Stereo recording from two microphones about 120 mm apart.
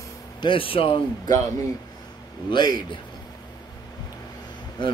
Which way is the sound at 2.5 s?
40° left (ahead or behind).